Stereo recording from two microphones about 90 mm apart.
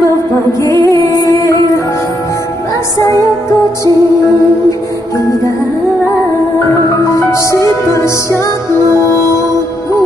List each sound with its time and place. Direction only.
0.0 s music: 35° left (ahead or behind)
7.1 s music: 35° left (ahead or behind)